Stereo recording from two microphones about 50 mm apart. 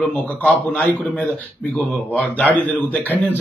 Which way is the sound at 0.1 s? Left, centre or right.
Left.